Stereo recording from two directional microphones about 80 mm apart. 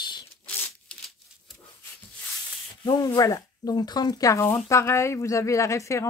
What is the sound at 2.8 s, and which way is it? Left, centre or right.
Speech, left.